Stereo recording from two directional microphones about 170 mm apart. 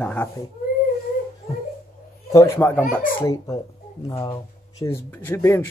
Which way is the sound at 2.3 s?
15° left (ahead or behind).